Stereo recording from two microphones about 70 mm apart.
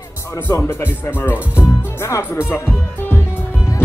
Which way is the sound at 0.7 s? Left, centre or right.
Left.